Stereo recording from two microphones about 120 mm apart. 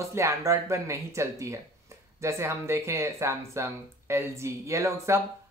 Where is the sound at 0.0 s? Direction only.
25° right (ahead or behind).